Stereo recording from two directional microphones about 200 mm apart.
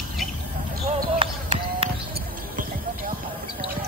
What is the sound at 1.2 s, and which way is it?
Basketball bounce, 25° right (ahead or behind).